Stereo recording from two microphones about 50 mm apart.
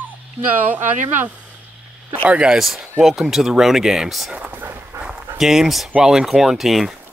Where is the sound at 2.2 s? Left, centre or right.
Right.